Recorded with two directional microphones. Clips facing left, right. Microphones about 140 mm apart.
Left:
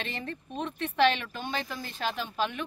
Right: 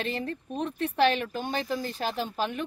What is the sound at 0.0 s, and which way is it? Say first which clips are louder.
Speech: right 5 dB; 35° right (ahead or behind).